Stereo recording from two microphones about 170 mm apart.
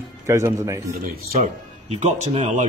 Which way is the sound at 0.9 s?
60° right (ahead or behind).